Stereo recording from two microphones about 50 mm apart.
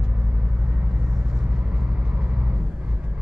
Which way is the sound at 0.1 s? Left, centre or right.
Right.